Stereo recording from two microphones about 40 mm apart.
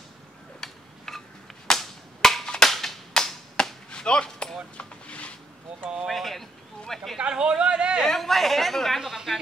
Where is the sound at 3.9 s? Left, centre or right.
Left.